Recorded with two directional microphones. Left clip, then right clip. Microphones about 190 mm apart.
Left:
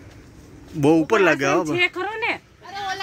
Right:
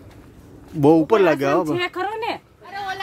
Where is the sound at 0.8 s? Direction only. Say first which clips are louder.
Right 2 dB; 15° right (ahead or behind).